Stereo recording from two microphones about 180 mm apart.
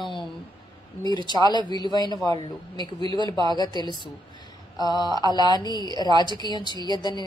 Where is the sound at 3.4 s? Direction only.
20° left (ahead or behind).